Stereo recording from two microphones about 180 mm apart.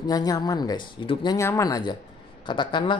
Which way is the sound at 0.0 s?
20° left (ahead or behind).